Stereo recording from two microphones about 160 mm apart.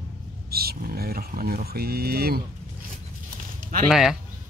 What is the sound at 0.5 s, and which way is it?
Speech, 75° right (ahead or behind).